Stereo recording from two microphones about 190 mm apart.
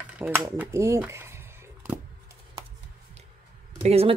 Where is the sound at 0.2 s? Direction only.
5° right (ahead or behind).